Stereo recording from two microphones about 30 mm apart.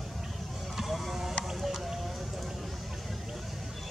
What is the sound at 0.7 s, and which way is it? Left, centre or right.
Vehicle, centre.